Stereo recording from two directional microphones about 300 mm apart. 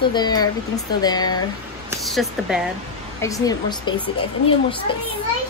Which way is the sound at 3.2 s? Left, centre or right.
Centre.